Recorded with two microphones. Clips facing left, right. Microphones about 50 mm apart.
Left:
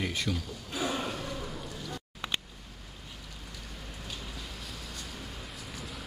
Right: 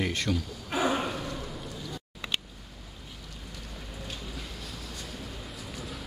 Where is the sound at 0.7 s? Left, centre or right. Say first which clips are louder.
Right 6 dB; right.